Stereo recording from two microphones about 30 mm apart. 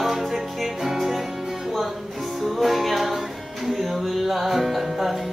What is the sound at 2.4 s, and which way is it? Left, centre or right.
Music, centre.